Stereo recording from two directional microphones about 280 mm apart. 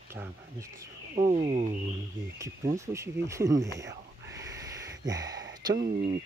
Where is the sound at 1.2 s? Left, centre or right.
Right.